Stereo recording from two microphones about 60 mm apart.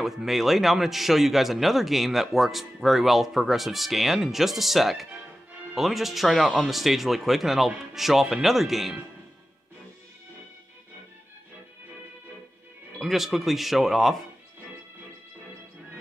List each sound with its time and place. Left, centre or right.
0.0 s a man's voice: centre
13.0 s a man's voice: centre